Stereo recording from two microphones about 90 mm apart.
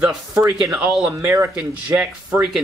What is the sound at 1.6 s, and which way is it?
Speech, 15° right (ahead or behind).